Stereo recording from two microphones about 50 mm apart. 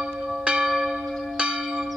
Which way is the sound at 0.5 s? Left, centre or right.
Centre.